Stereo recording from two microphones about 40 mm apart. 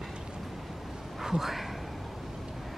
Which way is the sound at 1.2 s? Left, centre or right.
Centre.